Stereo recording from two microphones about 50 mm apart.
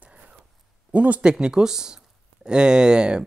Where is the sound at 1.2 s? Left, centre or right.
Centre.